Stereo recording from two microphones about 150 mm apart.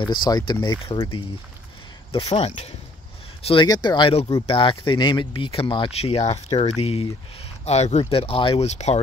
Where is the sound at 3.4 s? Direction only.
35° left (ahead or behind).